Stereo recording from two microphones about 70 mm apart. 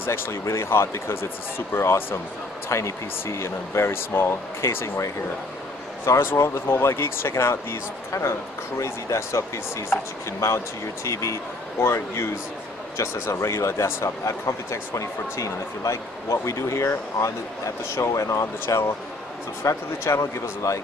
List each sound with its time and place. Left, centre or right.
0.0 s speech: left
11.8 s speech: left